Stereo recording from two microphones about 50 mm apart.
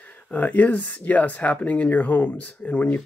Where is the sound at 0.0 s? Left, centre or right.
Left.